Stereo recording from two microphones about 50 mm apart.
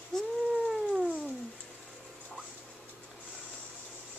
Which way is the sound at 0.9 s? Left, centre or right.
Right.